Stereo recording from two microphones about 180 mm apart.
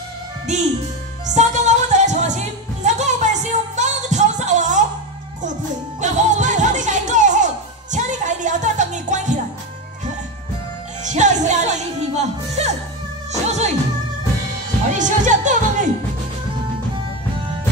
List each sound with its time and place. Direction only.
0.5 s a child's voice: 40° right (ahead or behind)
1.2 s music: 40° right (ahead or behind)
11.1 s music: 40° right (ahead or behind)
15.0 s music: 45° right (ahead or behind)